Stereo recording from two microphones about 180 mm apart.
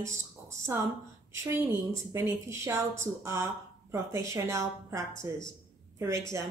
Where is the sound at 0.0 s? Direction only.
15° right (ahead or behind).